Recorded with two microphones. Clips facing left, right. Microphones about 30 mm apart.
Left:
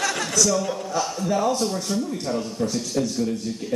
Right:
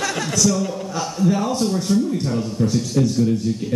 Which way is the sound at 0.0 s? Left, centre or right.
Centre.